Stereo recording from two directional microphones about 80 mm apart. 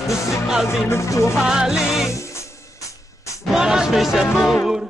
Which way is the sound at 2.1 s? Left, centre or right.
Left.